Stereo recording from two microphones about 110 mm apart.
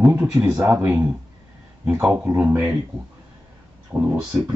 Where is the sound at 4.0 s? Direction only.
15° right (ahead or behind).